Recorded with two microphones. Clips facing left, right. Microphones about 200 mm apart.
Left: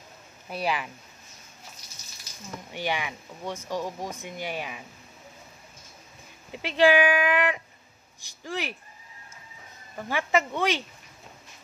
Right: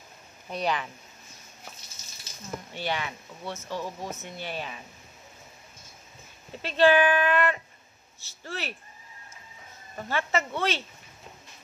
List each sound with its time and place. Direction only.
0.5 s speech: 5° left (ahead or behind)
2.7 s speech: 15° left (ahead or behind)
6.5 s speech: 15° left (ahead or behind)
10.0 s speech: 15° left (ahead or behind)